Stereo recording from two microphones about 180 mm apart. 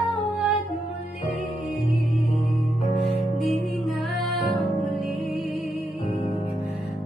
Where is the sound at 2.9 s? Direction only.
35° left (ahead or behind).